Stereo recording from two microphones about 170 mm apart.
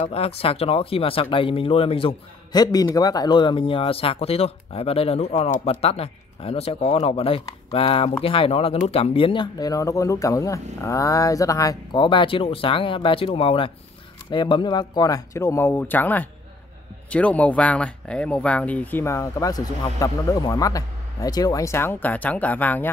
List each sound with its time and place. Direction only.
0.0 s speech: 35° left (ahead or behind); by 22.8 s 10° left (ahead or behind)